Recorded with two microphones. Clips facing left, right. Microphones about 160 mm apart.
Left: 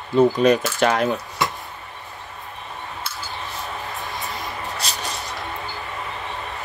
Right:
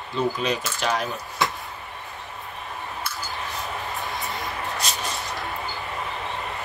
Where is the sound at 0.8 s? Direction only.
60° left (ahead or behind).